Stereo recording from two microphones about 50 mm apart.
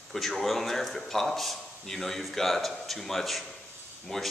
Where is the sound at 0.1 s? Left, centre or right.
Centre.